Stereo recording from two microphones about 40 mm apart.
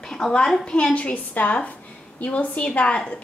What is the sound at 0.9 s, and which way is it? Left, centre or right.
Speech, left.